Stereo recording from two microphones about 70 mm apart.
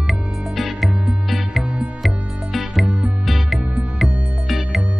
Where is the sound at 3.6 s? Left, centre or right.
Centre.